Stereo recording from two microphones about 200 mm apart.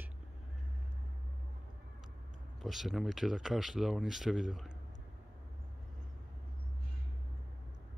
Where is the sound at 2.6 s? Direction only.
Centre (ahead or behind).